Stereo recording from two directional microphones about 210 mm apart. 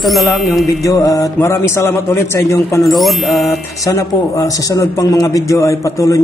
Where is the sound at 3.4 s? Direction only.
15° left (ahead or behind).